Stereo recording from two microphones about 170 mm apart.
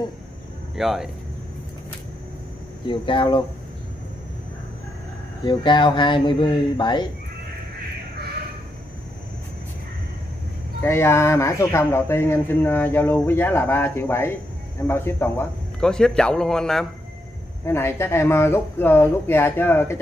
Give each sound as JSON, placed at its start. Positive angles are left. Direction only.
{"t": 0.7, "sound": "a man's voice", "side_deg": 0}
{"t": 2.9, "sound": "speech", "side_deg": 30}
{"t": 5.4, "sound": "speech", "side_deg": 30}
{"t": 10.8, "sound": "a man's voice", "side_deg": 15}
{"t": 17.6, "sound": "speech", "side_deg": 15}